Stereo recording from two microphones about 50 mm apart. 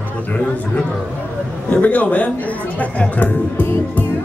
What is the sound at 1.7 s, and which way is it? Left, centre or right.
Chatter, left.